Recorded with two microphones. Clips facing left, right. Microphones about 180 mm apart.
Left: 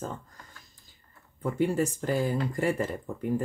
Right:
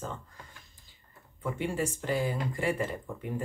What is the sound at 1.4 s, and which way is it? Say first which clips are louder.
Speech: left 5 dB; 40° left (ahead or behind).